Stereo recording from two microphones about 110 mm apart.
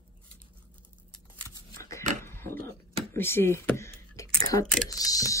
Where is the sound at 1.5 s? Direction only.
30° left (ahead or behind).